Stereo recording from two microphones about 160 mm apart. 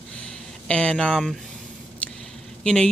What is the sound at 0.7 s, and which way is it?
Speech, 5° left (ahead or behind).